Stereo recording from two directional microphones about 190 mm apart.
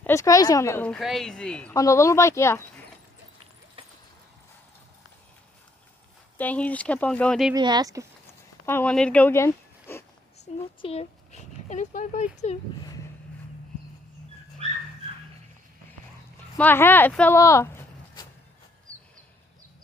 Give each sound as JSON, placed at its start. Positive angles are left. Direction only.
{"t": 0.0, "sound": "a woman's voice", "side_deg": 15}
{"t": 1.8, "sound": "a woman's voice", "side_deg": 15}
{"t": 3.8, "sound": "a sound", "side_deg": -30}
{"t": 6.3, "sound": "a woman's voice", "side_deg": 10}
{"t": 7.5, "sound": "speech", "side_deg": -20}
{"t": 8.6, "sound": "speech", "side_deg": 10}
{"t": 10.4, "sound": "speech", "side_deg": 30}
{"t": 14.6, "sound": "dog", "side_deg": -35}
{"t": 16.5, "sound": "speech", "side_deg": 10}